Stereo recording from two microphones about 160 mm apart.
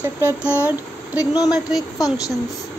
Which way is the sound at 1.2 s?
20° left (ahead or behind).